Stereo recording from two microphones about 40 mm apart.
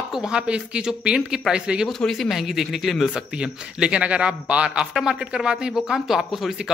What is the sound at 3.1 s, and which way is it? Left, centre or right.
Speech, right.